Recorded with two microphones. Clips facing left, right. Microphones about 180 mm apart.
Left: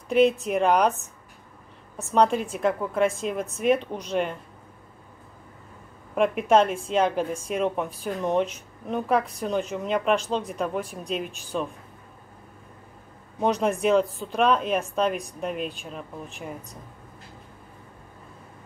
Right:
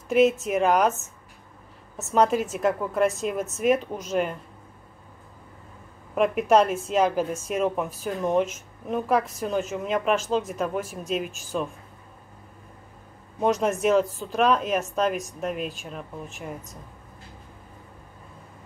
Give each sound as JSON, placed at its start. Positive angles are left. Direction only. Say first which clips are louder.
{"t": 0.1, "sound": "a woman's voice", "louder": "even", "side_deg": -5}
{"t": 6.1, "sound": "a woman's voice", "louder": "even", "side_deg": -5}
{"t": 13.4, "sound": "a woman's voice", "louder": "right 1 dB", "side_deg": 0}